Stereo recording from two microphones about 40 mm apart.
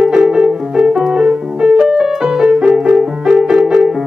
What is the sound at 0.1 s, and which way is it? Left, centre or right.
Music, centre.